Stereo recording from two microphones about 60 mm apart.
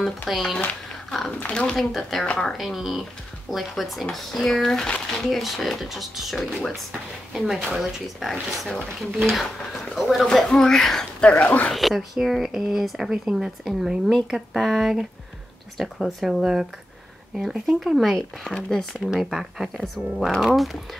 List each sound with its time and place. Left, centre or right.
0.3 s speech: centre
1.3 s speech: left; by 2.2 s centre
2.2 s speech: centre
2.5 s speech: centre
4.8 s speech: centre
5.2 s speech: centre
8.2 s speech: centre
10.2 s speech: centre
11.4 s speech: left
11.7 s speech: centre
18.9 s speech: centre
19.8 s speech: centre